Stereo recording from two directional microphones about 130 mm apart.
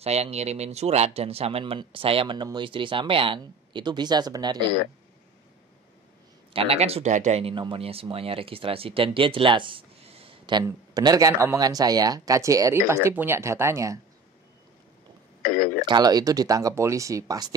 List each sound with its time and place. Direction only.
0.0 s speech: 55° right (ahead or behind); by 4.6 s 30° right (ahead or behind)
6.5 s speech: 45° right (ahead or behind); by 13.9 s 20° right (ahead or behind)
15.4 s speech: 90° left
15.8 s speech: 35° right (ahead or behind)